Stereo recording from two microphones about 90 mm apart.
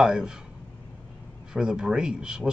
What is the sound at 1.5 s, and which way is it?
Speech, 10° right (ahead or behind).